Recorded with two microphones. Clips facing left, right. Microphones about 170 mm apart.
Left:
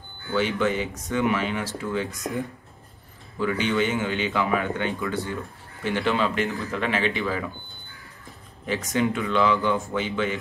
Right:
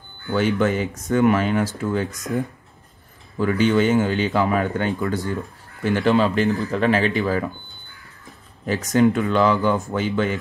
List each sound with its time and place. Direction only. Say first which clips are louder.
0.3 s speech: right 4 dB; 50° right (ahead or behind)
3.3 s speech: right 5 dB; 45° right (ahead or behind)
8.6 s speech: right 7 dB; 40° right (ahead or behind)